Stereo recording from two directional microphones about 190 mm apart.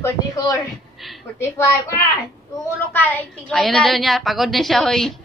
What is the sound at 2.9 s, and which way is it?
Speech, 10° left (ahead or behind).